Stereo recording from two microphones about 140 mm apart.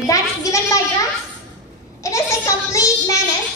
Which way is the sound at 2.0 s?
20° left (ahead or behind).